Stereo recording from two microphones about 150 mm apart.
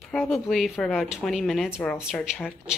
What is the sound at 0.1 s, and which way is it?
Speech, 5° left (ahead or behind).